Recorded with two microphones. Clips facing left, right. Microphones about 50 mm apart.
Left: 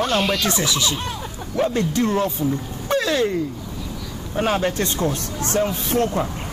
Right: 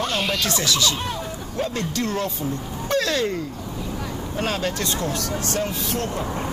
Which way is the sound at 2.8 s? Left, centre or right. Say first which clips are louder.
Left 2 dB; centre.